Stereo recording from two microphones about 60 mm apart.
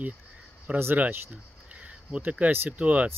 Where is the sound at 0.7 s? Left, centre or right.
Right.